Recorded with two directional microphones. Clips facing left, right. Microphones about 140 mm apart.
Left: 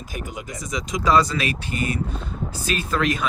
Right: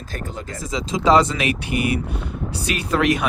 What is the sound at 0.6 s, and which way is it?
Speech, 30° right (ahead or behind).